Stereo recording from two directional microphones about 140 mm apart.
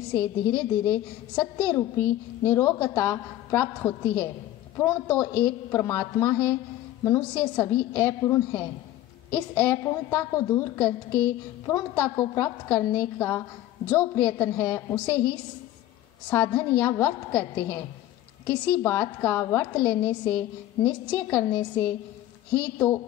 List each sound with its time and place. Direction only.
0.1 s a woman's voice: 15° left (ahead or behind)